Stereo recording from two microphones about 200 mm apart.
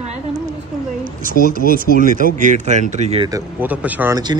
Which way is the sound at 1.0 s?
40° right (ahead or behind).